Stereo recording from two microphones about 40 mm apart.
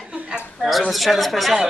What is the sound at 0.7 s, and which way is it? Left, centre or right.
Speech, centre.